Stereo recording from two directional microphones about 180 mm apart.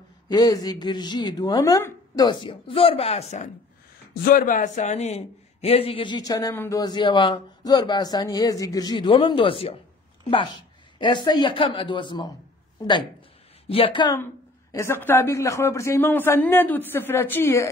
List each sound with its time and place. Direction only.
0.3 s speech: 20° left (ahead or behind); by 3.4 s 35° left (ahead or behind)
4.1 s speech: 55° left (ahead or behind); by 12.3 s 25° left (ahead or behind)
13.7 s a man's voice: 30° left (ahead or behind); by 17.6 s 15° left (ahead or behind)